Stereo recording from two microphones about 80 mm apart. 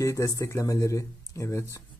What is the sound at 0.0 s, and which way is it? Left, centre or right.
Speech, left.